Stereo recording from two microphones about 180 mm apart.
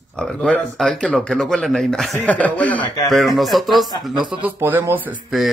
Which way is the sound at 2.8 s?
20° left (ahead or behind).